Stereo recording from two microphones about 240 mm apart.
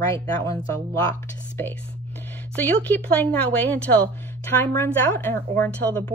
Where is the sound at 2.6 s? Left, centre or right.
Centre.